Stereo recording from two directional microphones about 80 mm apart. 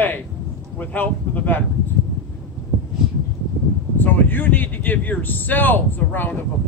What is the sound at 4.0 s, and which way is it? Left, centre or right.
Speech, left.